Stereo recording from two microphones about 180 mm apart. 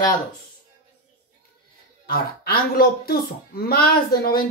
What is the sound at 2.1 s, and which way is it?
Speech, 55° left (ahead or behind).